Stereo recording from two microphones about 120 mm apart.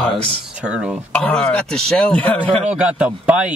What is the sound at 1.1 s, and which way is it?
Speech, 10° left (ahead or behind).